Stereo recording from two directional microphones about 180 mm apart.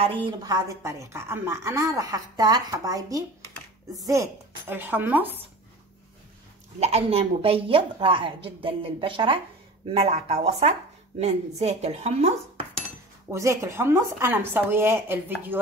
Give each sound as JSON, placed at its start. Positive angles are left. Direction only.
{"t": 0.0, "sound": "a woman's voice", "side_deg": -30}
{"t": 6.8, "sound": "a woman's voice", "side_deg": -35}
{"t": 13.3, "sound": "speech", "side_deg": -15}